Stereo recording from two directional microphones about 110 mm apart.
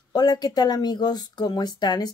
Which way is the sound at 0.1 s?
40° left (ahead or behind).